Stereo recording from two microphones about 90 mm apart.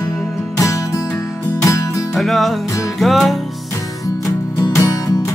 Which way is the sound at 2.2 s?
Centre (ahead or behind).